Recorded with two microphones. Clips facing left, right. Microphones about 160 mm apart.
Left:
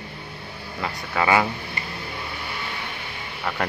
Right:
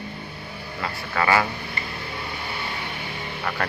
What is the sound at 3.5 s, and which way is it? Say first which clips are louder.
Speech: left 1 dB; 20° left (ahead or behind).